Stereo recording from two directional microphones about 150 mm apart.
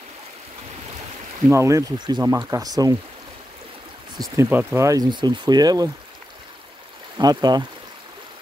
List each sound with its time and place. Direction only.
1.5 s speech: 20° right (ahead or behind)
4.4 s speech: 15° right (ahead or behind)
7.2 s speech: 25° right (ahead or behind)